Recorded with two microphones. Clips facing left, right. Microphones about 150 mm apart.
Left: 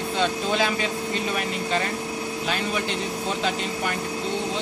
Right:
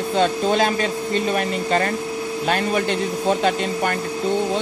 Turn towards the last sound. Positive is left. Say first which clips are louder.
# right 6 dB
turn(degrees=-50)  # may be behind; listen again after turning